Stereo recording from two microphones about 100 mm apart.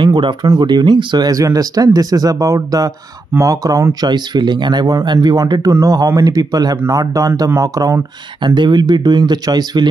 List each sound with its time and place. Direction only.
0.0 s speech: 50° right (ahead or behind)
8.4 s speech: 50° right (ahead or behind)